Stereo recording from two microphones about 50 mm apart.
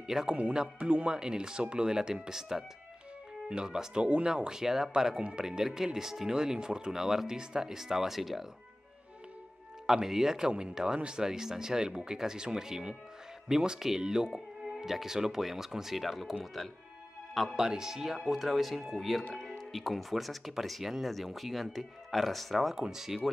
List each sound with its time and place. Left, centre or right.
0.0 s speech: centre
0.4 s speech: right
1.1 s speech: centre
9.8 s speech: centre
17.6 s speech: centre